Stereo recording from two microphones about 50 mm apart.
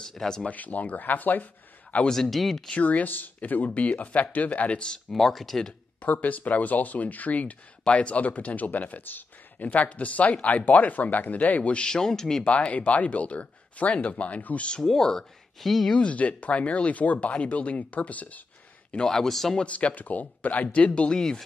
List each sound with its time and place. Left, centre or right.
0.0 s speech: centre
0.5 s a man's voice: left
2.0 s speech: centre
2.7 s speech: left
4.9 s speech: centre
6.0 s speech: left
11.9 s speech: centre
12.4 s speech: left
14.8 s speech: centre
15.9 s speech: left
19.0 s speech: centre
19.5 s speech: left
21.2 s speech: centre